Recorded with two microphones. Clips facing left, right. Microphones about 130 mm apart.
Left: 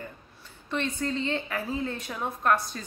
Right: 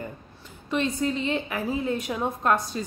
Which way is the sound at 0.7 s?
15° right (ahead or behind).